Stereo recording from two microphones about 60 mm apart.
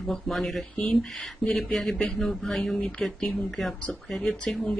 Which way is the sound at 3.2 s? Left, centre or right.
Centre.